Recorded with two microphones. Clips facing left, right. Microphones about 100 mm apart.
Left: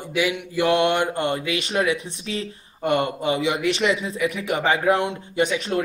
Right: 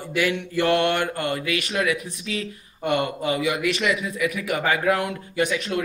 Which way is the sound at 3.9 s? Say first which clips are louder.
Left 1 dB; 30° left (ahead or behind).